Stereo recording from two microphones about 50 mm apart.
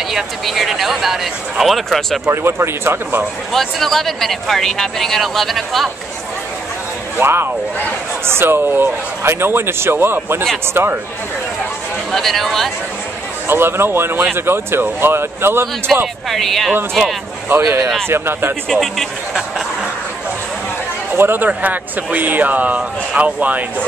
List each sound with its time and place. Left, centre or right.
0.1 s speech: centre
2.3 s a man's voice: right
3.5 s speech: centre
7.2 s a man's voice: right
12.1 s speech: centre
13.5 s a man's voice: right
16.3 s speech: centre
17.6 s speech: right
18.0 s a man's voice: right
18.7 s speech: centre
21.1 s speech: right